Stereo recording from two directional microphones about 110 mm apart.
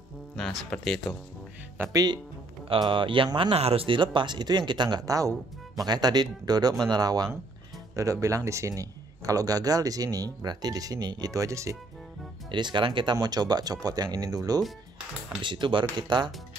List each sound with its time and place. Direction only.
0.4 s speech: 5° left (ahead or behind)
1.9 s speech: 35° right (ahead or behind)
2.7 s speech: 50° right (ahead or behind)
3.5 s speech: 60° right (ahead or behind); by 11.7 s 30° right (ahead or behind)
12.4 s speech: 45° right (ahead or behind)
15.4 s speech: 45° right (ahead or behind)